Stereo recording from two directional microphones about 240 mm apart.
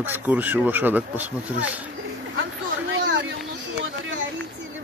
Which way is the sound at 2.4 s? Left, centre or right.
Right.